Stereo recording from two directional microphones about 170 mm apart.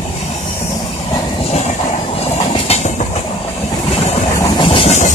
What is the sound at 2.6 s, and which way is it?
Train, 40° left (ahead or behind).